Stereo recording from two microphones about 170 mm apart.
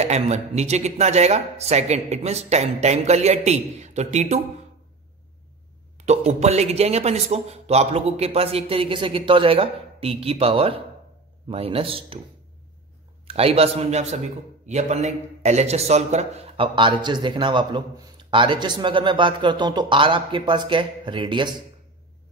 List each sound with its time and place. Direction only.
0.0 s speech: 40° right (ahead or behind)
5.9 s speech: 40° right (ahead or behind)
13.3 s a man's voice: 35° right (ahead or behind)